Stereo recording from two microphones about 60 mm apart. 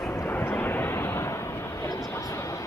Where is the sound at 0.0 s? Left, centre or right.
Left.